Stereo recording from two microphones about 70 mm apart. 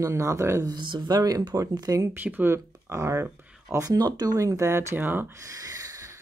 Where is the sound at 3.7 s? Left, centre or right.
Right.